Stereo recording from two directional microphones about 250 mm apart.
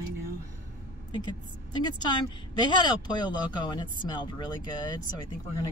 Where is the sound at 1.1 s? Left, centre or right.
Centre.